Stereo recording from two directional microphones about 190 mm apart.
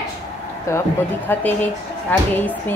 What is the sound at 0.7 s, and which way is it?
A woman's voice, 15° left (ahead or behind).